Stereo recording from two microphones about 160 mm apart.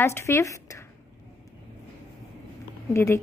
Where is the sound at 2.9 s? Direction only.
15° left (ahead or behind).